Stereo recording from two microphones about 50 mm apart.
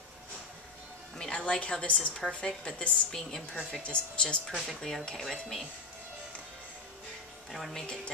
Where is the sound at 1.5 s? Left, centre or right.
Left.